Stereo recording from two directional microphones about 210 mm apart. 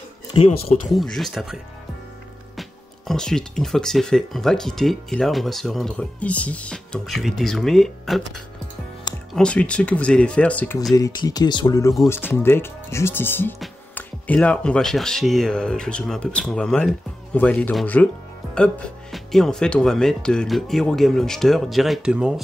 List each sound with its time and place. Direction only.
0.3 s speech: 30° left (ahead or behind)
0.9 s speech: centre (ahead or behind)
3.1 s speech: 5° left (ahead or behind)
10.8 s speech: 15° left (ahead or behind)
19.1 s speech: centre (ahead or behind)